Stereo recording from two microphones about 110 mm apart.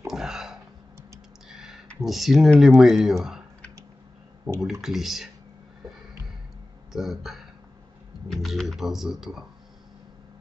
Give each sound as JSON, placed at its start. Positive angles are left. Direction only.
{"t": 0.0, "sound": "a sound", "side_deg": -5}
{"t": 1.5, "sound": "clicking", "side_deg": -5}
{"t": 2.0, "sound": "speech", "side_deg": 0}
{"t": 4.5, "sound": "speech", "side_deg": -40}
{"t": 4.8, "sound": "speech", "side_deg": -5}
{"t": 6.9, "sound": "speech", "side_deg": 0}